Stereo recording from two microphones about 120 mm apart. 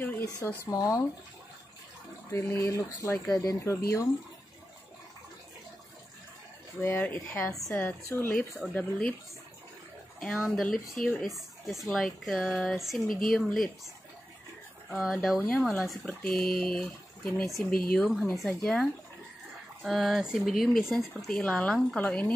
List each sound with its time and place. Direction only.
0.0 s speech: 15° left (ahead or behind)
0.7 s speech: 25° left (ahead or behind)
2.3 s speech: 20° left (ahead or behind)
6.8 s speech: 20° left (ahead or behind)
10.5 s speech: centre (ahead or behind)
14.9 s speech: centre (ahead or behind)